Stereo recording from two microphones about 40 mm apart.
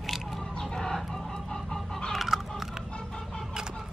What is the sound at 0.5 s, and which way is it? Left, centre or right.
Chicken, centre.